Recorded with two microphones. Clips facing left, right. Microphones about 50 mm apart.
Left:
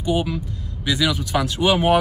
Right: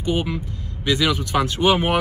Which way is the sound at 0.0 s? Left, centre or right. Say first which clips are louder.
Left 1 dB; right.